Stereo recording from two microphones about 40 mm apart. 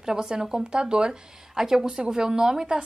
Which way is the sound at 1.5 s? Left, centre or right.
Centre.